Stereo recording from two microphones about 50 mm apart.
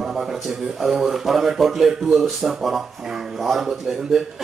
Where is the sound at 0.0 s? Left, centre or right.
Centre.